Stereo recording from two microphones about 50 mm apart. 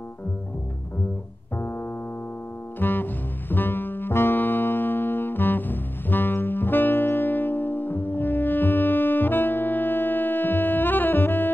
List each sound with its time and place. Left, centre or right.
2.8 s music: left